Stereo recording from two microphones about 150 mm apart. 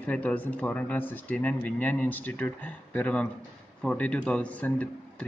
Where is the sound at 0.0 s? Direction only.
10° left (ahead or behind).